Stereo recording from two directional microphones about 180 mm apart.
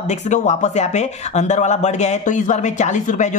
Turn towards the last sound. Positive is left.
turn(degrees=45)  # may be behind; listen again after turning